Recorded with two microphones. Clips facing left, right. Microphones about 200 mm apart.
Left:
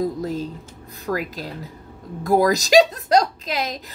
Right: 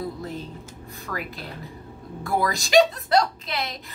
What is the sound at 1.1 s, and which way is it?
A woman's voice, 40° left (ahead or behind).